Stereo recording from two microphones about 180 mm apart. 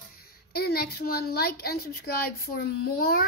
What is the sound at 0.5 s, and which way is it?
A child's voice, 60° left (ahead or behind).